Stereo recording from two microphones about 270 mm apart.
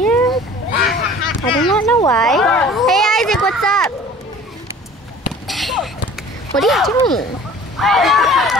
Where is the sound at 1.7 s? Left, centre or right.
Centre.